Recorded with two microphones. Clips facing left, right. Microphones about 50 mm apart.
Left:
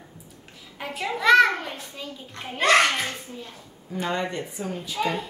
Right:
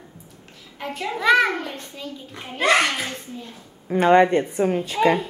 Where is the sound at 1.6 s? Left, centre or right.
Centre.